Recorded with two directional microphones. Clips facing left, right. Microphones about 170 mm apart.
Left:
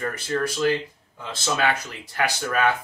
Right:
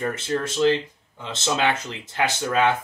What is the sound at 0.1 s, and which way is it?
Speech, 25° right (ahead or behind).